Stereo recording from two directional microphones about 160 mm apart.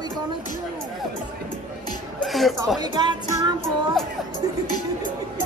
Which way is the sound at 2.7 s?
25° right (ahead or behind).